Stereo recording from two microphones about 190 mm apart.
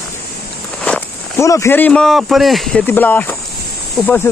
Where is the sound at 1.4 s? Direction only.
15° left (ahead or behind).